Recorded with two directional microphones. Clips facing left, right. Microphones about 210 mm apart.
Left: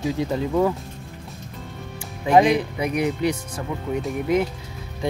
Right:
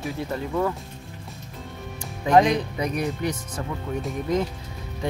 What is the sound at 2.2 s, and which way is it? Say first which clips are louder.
Speech: left 2 dB; 10° left (ahead or behind).